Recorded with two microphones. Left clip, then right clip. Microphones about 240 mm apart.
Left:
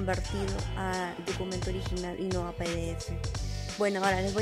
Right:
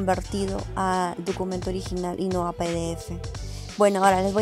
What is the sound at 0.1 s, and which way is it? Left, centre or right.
Speech, centre.